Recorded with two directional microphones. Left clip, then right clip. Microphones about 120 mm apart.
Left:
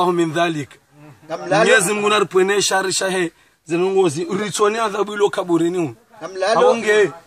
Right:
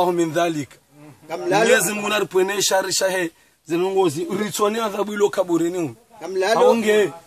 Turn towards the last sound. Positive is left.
turn(degrees=-20)  # may be behind; listen again after turning